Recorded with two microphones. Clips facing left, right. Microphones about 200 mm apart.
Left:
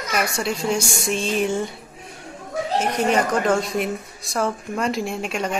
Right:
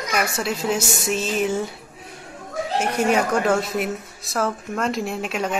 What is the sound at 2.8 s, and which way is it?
Speech, 10° right (ahead or behind).